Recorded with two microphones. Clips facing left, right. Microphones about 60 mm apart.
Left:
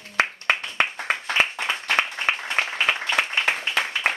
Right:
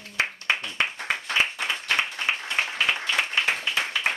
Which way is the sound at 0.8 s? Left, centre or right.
Left.